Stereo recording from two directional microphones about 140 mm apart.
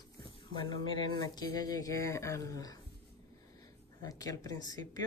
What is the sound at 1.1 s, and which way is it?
Speech, 30° left (ahead or behind).